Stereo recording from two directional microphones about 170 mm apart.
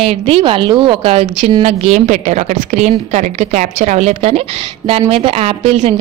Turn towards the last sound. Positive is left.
turn(degrees=-40)  # may be behind; listen again after turning